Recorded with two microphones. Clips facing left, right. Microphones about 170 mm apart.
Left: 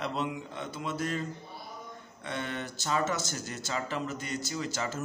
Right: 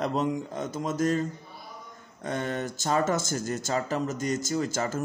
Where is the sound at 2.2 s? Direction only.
45° right (ahead or behind).